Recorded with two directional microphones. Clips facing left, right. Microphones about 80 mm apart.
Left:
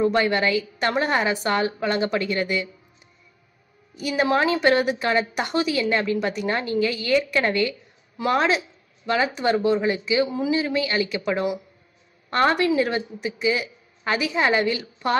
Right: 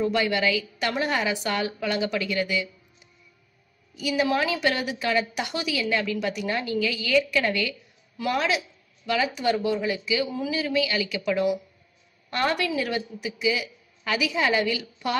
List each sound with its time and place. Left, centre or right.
0.0 s a woman's voice: left
3.9 s a woman's voice: left